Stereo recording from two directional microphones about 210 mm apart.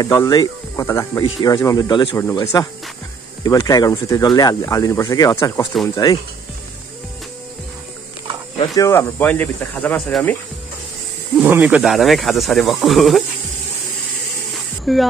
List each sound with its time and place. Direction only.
0.0 s speech: 15° left (ahead or behind)
8.5 s speech: 15° left (ahead or behind)
11.3 s speech: 5° right (ahead or behind)
14.9 s speech: centre (ahead or behind)